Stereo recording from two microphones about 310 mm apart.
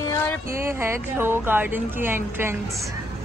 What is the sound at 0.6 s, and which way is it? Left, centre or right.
Speech, centre.